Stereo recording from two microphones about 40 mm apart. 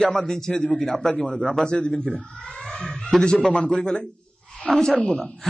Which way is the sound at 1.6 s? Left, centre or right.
Left.